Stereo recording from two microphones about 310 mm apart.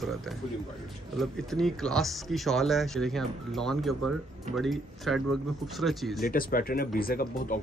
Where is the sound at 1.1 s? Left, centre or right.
Centre.